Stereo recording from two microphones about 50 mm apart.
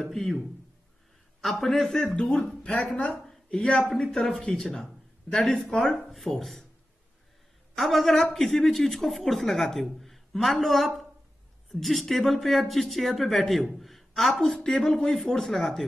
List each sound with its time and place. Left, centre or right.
0.0 s speech: centre
2.1 s a woman's voice: centre
4.0 s speech: centre
7.7 s speech: centre